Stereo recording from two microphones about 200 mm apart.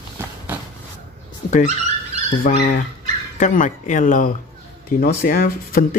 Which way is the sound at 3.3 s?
40° left (ahead or behind).